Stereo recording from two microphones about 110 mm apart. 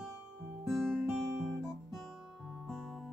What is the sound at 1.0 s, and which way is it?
Guitar, 10° right (ahead or behind).